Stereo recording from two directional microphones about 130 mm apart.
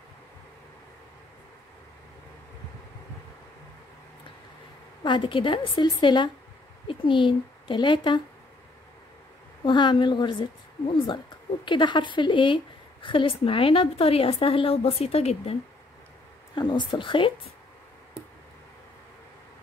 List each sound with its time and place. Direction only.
5.0 s a woman's voice: 40° left (ahead or behind)
9.7 s a woman's voice: 40° left (ahead or behind)
16.5 s a woman's voice: 35° left (ahead or behind)